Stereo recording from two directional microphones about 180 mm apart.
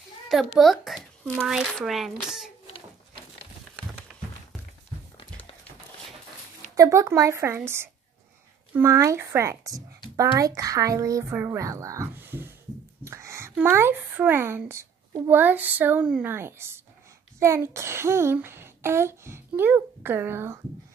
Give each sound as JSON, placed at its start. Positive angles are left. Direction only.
{"t": 0.6, "sound": "a child's voice", "side_deg": 0}
{"t": 6.7, "sound": "a woman's voice", "side_deg": -20}